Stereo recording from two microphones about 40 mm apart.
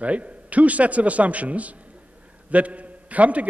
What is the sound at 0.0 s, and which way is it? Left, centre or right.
A man's voice, right.